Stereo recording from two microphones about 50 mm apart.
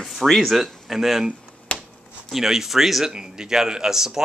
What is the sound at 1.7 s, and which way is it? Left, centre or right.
Finger snapping, left.